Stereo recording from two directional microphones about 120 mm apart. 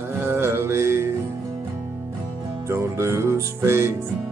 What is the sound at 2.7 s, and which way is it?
Music, 20° right (ahead or behind).